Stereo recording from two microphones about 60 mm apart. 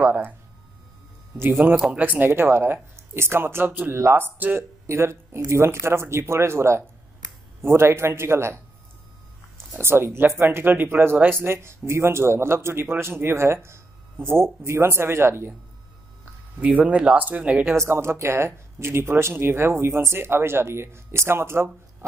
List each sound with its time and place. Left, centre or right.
0.0 s speech: right
1.4 s speech: right
3.9 s speech: right
9.8 s speech: right
16.6 s speech: centre
17.7 s speech: right